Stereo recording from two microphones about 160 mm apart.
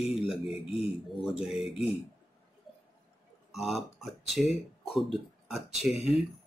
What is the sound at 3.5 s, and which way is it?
Speech, centre (ahead or behind).